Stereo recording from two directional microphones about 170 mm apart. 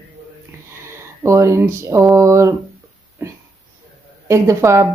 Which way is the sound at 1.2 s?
15° right (ahead or behind).